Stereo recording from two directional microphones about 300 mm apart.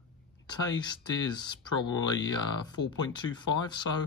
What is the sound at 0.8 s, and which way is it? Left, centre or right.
Speech, centre.